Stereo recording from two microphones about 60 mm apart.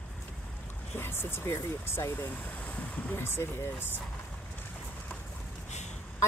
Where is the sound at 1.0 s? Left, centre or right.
Left.